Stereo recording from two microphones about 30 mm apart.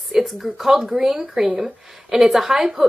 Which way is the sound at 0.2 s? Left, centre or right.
Centre.